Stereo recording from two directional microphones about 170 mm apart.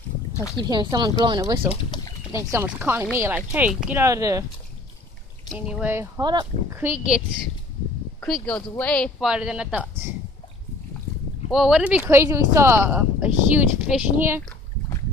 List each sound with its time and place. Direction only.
0.6 s speech: 25° right (ahead or behind)
1.7 s speech: 25° left (ahead or behind)
2.3 s speech: 15° right (ahead or behind)
5.7 s speech: 10° right (ahead or behind)
6.2 s speech: 25° right (ahead or behind)
6.8 s speech: 5° right (ahead or behind)
8.2 s speech: 5° left (ahead or behind)
9.3 s speech: 5° right (ahead or behind)
11.5 s speech: 5° right (ahead or behind)